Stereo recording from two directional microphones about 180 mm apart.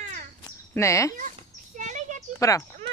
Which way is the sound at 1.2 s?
45° right (ahead or behind).